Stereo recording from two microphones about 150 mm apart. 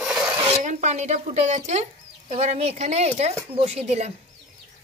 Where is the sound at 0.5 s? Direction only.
50° right (ahead or behind).